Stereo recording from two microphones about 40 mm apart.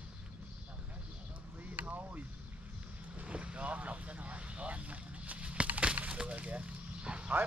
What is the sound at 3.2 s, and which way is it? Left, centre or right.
Vehicle, right.